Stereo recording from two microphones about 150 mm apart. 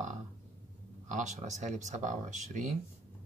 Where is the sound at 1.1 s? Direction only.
50° right (ahead or behind).